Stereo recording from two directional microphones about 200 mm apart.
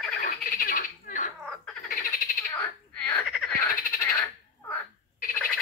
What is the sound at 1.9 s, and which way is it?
Frog, 45° left (ahead or behind).